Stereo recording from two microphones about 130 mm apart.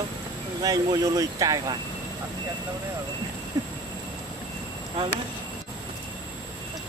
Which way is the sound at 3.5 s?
30° right (ahead or behind).